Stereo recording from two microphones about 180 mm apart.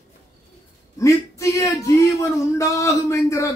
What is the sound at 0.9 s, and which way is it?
Speech, 15° left (ahead or behind).